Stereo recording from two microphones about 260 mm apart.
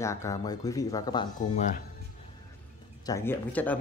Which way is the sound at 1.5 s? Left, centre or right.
Left.